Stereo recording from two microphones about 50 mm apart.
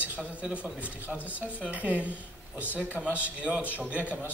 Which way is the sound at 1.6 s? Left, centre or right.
Right.